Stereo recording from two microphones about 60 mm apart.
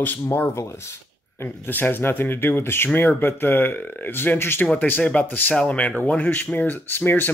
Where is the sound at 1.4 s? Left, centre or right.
Left.